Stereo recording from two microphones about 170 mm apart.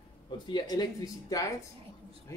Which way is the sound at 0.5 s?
25° left (ahead or behind).